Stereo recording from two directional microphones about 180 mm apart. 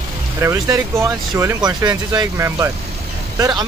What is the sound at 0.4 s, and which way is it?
Speech, 15° right (ahead or behind).